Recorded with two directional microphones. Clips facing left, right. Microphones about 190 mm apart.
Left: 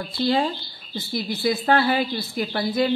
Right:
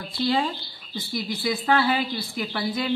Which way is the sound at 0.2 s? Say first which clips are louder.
Left 2 dB; 40° left (ahead or behind).